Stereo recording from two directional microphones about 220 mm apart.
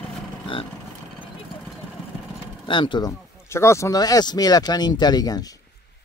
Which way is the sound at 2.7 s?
20° left (ahead or behind).